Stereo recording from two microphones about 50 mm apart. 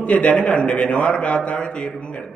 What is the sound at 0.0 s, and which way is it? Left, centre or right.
A man's voice, left.